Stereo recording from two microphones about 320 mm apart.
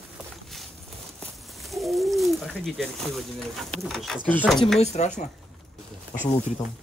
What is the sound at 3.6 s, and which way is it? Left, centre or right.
Speech, centre.